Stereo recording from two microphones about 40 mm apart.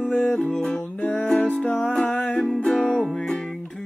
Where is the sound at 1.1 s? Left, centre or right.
Left.